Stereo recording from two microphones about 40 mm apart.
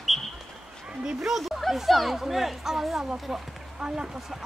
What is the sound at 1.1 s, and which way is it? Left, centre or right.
Speech, centre.